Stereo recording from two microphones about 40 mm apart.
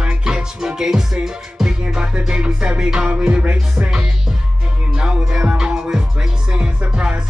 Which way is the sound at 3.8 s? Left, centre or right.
Centre.